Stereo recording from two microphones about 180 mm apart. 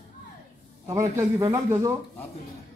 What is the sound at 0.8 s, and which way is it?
Speech, 15° right (ahead or behind).